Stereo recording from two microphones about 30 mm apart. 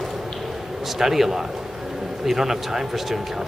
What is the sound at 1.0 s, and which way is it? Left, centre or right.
Speech, centre.